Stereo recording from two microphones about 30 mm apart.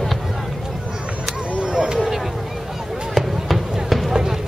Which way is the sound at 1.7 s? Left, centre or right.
Right.